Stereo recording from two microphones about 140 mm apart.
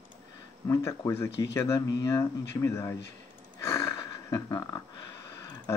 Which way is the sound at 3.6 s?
20° left (ahead or behind).